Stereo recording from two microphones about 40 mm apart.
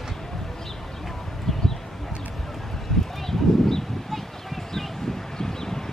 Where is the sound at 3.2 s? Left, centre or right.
Centre.